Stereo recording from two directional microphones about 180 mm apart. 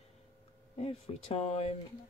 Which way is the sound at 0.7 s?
35° left (ahead or behind).